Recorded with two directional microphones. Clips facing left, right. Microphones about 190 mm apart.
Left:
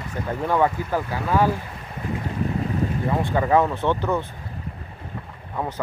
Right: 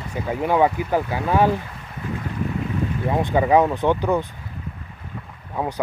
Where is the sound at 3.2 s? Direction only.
15° right (ahead or behind).